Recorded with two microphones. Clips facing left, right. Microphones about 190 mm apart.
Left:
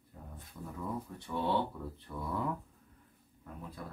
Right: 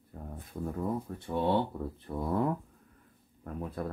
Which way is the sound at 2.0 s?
45° right (ahead or behind).